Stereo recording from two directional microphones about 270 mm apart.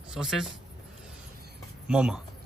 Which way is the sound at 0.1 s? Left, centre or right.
Centre.